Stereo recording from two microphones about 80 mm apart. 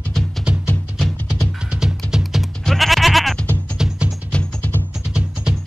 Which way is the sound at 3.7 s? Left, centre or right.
Centre.